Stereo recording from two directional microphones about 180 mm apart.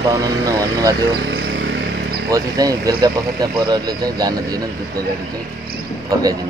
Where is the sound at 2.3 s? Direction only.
20° right (ahead or behind).